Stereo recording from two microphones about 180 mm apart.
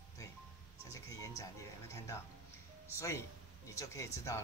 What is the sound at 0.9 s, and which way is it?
Speech, 20° left (ahead or behind).